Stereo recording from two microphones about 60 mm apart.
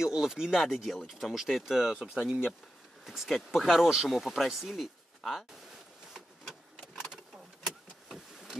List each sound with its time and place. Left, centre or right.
0.0 s speech: centre
7.6 s vehicle: centre